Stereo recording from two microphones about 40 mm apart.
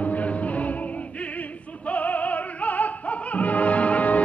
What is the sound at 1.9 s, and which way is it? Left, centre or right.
Opera, left.